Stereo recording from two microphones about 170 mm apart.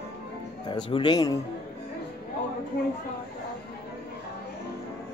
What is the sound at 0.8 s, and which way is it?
Speech, 30° left (ahead or behind).